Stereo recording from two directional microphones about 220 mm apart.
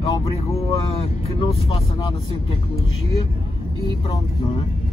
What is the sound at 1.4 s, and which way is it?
Speech, 25° left (ahead or behind).